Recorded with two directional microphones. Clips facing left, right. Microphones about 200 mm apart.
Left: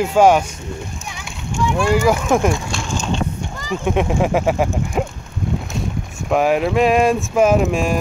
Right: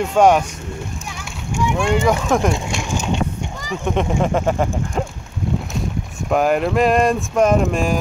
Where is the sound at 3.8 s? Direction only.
5° left (ahead or behind).